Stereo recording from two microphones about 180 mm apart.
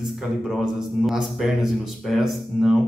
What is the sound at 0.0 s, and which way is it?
A man's voice, centre (ahead or behind).